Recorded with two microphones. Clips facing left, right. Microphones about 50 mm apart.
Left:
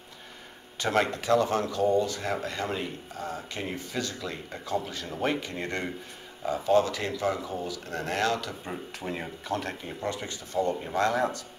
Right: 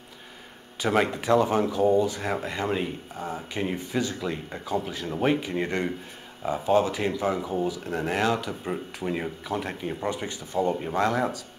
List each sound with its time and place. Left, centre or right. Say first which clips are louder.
0.7 s speech: right 2 dB; centre